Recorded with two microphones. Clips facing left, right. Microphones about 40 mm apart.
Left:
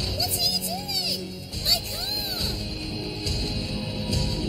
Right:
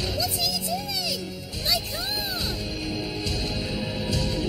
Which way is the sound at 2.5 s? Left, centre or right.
Centre.